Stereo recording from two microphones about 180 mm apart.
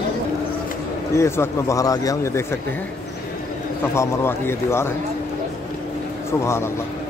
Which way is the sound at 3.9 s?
15° left (ahead or behind).